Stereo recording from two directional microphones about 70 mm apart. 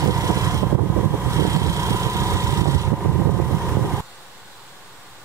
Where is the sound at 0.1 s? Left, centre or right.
Right.